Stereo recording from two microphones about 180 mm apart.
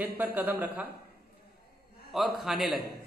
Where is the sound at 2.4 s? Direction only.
Centre (ahead or behind).